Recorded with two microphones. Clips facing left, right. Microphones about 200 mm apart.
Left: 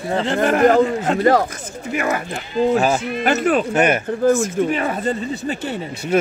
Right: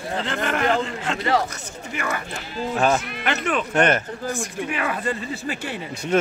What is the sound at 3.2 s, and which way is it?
Speech, 40° left (ahead or behind).